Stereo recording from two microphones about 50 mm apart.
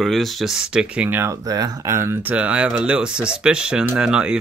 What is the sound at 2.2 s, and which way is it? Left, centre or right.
Speech, right.